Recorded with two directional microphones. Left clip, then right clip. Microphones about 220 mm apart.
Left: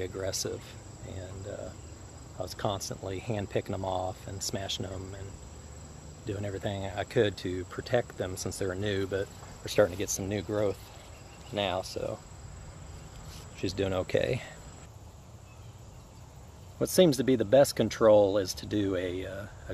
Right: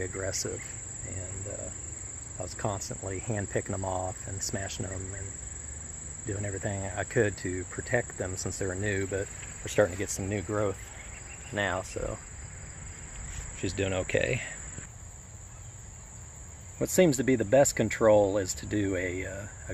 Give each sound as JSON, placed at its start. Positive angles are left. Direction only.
{"t": 0.0, "sound": "speech", "side_deg": -5}
{"t": 2.3, "sound": "speech", "side_deg": -5}
{"t": 6.2, "sound": "speech", "side_deg": -5}
{"t": 13.6, "sound": "speech", "side_deg": 0}
{"t": 16.8, "sound": "speech", "side_deg": -10}